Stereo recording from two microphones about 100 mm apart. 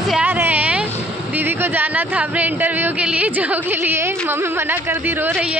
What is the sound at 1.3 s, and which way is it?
A woman's voice, 20° right (ahead or behind).